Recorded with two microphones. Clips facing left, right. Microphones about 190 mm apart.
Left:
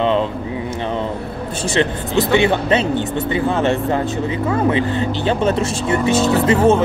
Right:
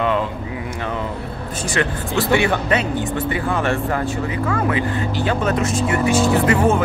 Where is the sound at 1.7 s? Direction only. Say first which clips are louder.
Left 3 dB; 25° left (ahead or behind).